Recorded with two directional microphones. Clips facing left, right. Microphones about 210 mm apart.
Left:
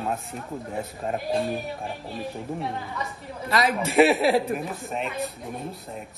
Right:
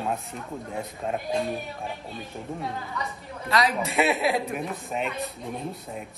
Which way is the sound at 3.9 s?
30° left (ahead or behind).